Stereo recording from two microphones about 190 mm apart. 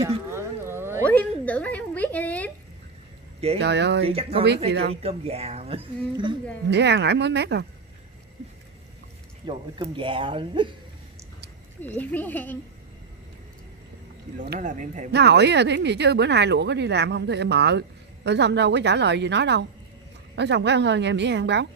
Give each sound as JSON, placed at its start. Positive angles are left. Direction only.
{"t": 0.3, "sound": "a sound", "side_deg": -15}
{"t": 1.4, "sound": "a sound", "side_deg": 10}
{"t": 3.5, "sound": "speech", "side_deg": -65}
{"t": 4.0, "sound": "speech", "side_deg": -30}
{"t": 4.6, "sound": "speech", "side_deg": -60}
{"t": 5.0, "sound": "speech", "side_deg": -35}
{"t": 6.7, "sound": "speech", "side_deg": -65}
{"t": 9.5, "sound": "speech", "side_deg": -25}
{"t": 12.0, "sound": "speech", "side_deg": 10}
{"t": 14.6, "sound": "speech", "side_deg": -40}
{"t": 15.0, "sound": "speech", "side_deg": -60}